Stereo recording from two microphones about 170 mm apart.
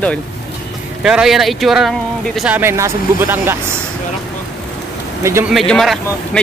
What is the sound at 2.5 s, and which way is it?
Speech, 15° right (ahead or behind).